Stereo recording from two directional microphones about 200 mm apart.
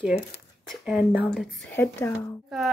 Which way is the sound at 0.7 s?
5° right (ahead or behind).